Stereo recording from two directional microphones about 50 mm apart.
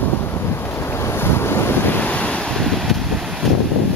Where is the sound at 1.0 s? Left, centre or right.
Left.